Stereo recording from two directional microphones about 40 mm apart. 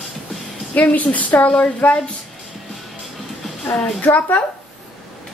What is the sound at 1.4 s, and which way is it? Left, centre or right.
Speech, left.